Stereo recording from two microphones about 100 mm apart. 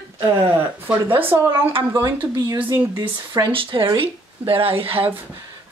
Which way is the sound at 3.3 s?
55° right (ahead or behind).